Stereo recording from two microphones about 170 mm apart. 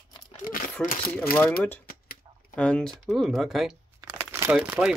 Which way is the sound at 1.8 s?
60° left (ahead or behind).